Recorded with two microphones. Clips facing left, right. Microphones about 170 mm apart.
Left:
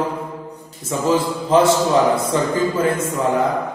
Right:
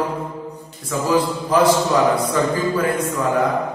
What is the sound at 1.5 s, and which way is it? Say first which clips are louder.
A man's voice: left 1 dB; 25° left (ahead or behind).